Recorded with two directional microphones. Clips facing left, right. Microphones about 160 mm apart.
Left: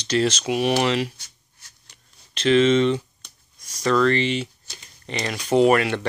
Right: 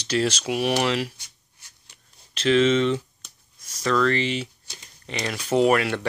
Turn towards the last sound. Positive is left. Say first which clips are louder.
# left 2 dB
turn(degrees=-5)  # may be behind; listen again after turning